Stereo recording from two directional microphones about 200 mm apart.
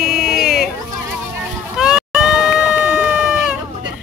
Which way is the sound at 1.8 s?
5° right (ahead or behind).